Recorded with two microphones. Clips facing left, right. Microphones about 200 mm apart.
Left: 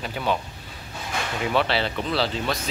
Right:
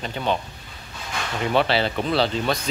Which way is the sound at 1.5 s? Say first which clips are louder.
Right 3 dB; 30° right (ahead or behind).